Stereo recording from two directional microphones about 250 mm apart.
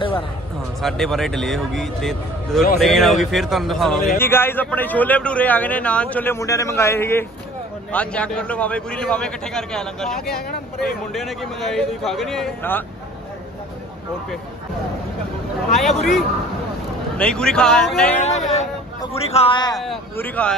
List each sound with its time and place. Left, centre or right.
0.7 s a man's voice: centre
15.8 s a man's voice: centre
17.2 s a man's voice: centre
18.1 s a man's voice: left
19.8 s a man's voice: centre